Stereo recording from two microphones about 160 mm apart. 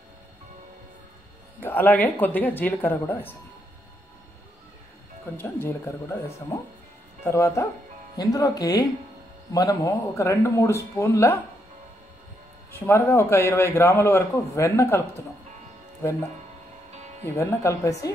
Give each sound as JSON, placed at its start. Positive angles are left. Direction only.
{"t": 1.6, "sound": "a man's voice", "side_deg": 10}
{"t": 5.4, "sound": "a man's voice", "side_deg": 15}
{"t": 12.7, "sound": "a man's voice", "side_deg": 15}
{"t": 17.4, "sound": "speech", "side_deg": 20}